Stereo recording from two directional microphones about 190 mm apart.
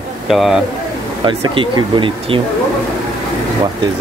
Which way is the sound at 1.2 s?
25° right (ahead or behind).